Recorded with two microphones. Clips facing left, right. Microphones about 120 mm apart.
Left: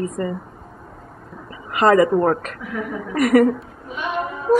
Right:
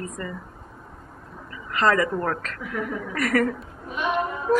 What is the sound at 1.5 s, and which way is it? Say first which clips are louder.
Speech: left 6 dB; 25° left (ahead or behind).